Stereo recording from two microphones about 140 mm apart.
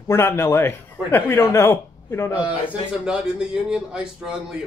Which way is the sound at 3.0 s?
5° right (ahead or behind).